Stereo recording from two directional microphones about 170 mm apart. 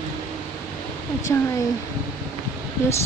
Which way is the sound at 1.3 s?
15° left (ahead or behind).